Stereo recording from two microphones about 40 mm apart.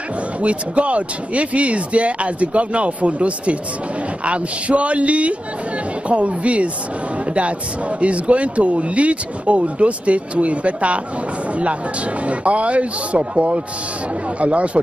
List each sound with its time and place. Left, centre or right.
0.4 s speech: right
8.0 s speech: right
12.3 s speech: right